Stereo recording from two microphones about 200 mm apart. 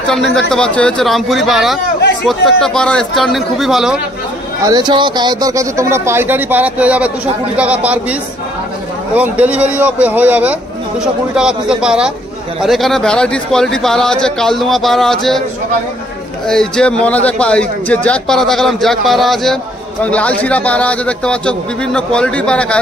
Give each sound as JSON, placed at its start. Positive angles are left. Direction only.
{"t": 0.0, "sound": "a man's voice", "side_deg": 0}
{"t": 4.6, "sound": "a man's voice", "side_deg": -20}
{"t": 16.4, "sound": "a man's voice", "side_deg": 5}